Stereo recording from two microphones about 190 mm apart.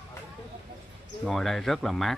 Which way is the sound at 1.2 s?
Centre (ahead or behind).